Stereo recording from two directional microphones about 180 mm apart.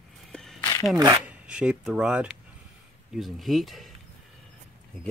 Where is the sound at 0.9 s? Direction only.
20° right (ahead or behind).